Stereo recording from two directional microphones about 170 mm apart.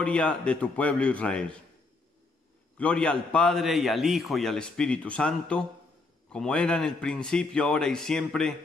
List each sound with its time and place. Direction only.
0.0 s a man's voice: 5° left (ahead or behind)
2.8 s a man's voice: 5° left (ahead or behind)